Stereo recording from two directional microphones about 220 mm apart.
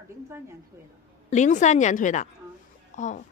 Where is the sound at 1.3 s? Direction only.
35° left (ahead or behind).